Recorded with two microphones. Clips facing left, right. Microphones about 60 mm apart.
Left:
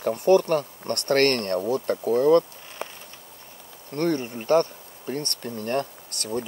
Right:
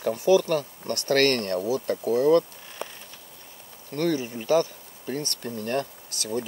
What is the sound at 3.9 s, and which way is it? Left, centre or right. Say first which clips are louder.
Speech: left 1 dB; left.